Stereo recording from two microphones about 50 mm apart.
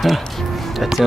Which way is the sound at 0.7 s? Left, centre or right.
Centre.